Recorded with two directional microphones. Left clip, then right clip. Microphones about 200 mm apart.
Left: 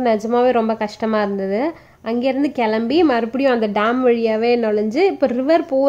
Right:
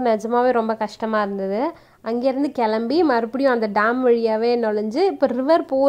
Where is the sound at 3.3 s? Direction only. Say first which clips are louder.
Left 2 dB; 15° right (ahead or behind).